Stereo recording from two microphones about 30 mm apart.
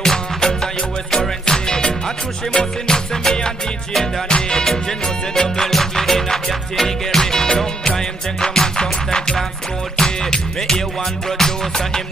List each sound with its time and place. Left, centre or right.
0.0 s music: left